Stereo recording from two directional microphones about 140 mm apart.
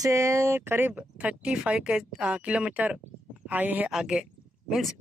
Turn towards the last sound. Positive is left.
turn(degrees=0)  # may be behind; listen again after turning